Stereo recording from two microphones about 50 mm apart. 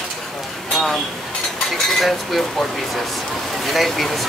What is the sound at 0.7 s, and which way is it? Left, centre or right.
Chink, centre.